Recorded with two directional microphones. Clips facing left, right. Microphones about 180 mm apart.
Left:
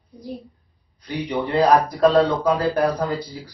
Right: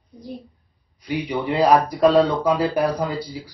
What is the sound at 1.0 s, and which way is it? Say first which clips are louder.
Speech: even; 10° right (ahead or behind).